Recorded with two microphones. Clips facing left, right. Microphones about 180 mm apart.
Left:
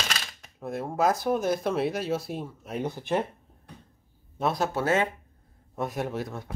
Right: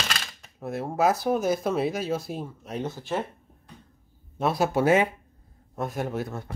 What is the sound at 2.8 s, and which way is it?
Speech, 15° left (ahead or behind).